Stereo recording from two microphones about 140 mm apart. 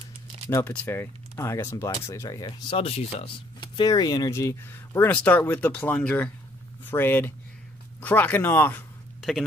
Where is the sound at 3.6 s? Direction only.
30° left (ahead or behind); by 8.9 s 15° left (ahead or behind).